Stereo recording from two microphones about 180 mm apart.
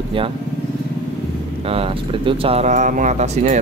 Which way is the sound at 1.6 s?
30° right (ahead or behind).